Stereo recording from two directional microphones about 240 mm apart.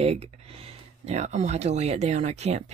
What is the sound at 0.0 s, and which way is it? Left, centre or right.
Speech, right.